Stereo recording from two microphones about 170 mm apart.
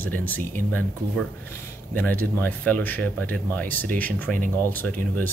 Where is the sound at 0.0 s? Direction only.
10° left (ahead or behind).